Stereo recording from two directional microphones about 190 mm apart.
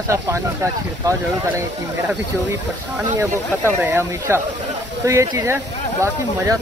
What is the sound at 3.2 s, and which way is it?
Speech, 15° right (ahead or behind).